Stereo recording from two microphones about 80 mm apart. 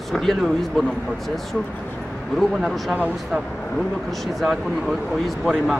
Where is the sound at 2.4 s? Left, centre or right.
Centre.